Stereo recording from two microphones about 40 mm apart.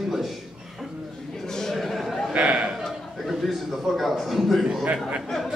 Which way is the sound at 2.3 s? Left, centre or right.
Right.